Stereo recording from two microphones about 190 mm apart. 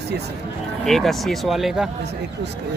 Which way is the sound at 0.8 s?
Centre (ahead or behind).